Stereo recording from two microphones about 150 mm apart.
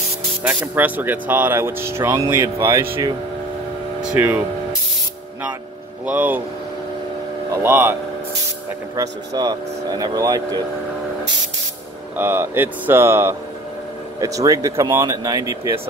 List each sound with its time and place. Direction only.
0.4 s speech: 10° right (ahead or behind)
4.0 s speech: 10° right (ahead or behind)
6.0 s speech: 10° right (ahead or behind)
7.5 s speech: 15° right (ahead or behind)
12.2 s speech: 15° right (ahead or behind)